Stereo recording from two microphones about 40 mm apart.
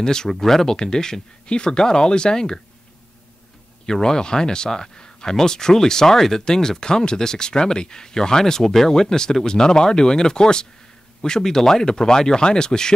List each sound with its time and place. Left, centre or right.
0.0 s speech: centre
0.3 s speech: centre
0.7 s speech: centre
3.8 s speech: centre